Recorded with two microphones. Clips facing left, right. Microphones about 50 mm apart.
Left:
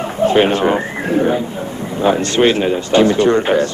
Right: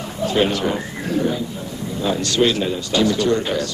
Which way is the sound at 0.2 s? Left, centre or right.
Left.